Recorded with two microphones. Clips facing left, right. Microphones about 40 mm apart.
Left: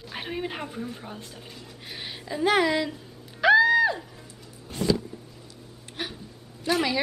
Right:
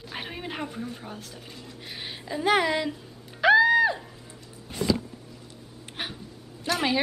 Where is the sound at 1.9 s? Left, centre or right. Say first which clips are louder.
Even; centre.